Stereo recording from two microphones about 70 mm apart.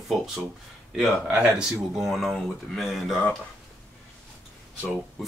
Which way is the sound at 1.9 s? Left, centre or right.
Centre.